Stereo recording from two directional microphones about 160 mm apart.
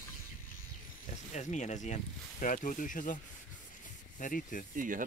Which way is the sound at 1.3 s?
50° left (ahead or behind).